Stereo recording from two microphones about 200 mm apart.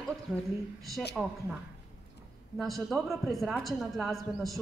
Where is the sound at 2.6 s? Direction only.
Centre (ahead or behind).